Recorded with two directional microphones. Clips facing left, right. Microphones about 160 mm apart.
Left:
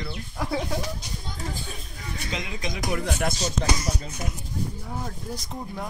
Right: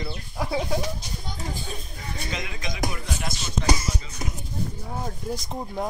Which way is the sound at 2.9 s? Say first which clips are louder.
Left 6 dB; 55° left (ahead or behind).